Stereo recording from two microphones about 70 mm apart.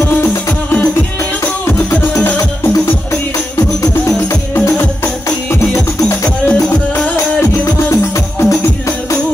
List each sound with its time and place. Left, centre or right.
4.6 s music: left
6.0 s music: left
7.9 s music: left